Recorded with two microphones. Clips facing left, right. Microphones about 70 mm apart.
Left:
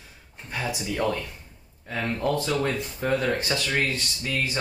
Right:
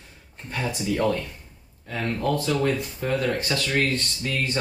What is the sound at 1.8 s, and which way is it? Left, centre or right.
Speech, centre.